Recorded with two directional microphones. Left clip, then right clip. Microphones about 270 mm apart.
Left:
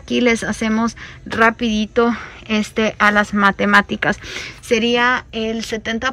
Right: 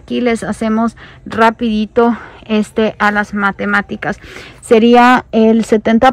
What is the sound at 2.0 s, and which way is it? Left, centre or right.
Speech, centre.